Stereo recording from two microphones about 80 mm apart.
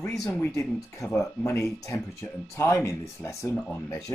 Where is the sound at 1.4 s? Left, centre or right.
Left.